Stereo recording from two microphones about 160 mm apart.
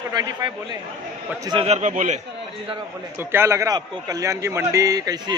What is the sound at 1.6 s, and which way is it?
Speech, 45° right (ahead or behind).